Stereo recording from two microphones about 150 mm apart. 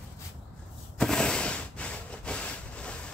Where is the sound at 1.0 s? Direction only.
5° left (ahead or behind).